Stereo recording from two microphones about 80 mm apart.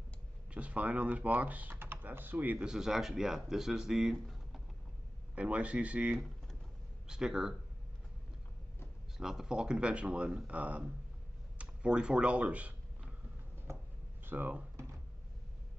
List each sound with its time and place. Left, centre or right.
0.5 s speech: centre
2.7 s speech: centre
5.3 s speech: centre
9.2 s speech: centre
11.5 s a sound: centre
14.2 s speech: right